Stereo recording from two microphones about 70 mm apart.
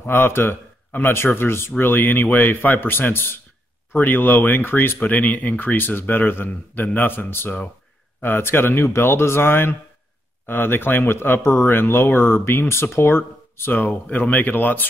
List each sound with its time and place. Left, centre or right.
0.0 s speech: left